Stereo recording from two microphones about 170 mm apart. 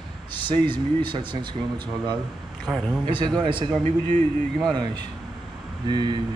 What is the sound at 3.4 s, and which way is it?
Speech, 25° right (ahead or behind).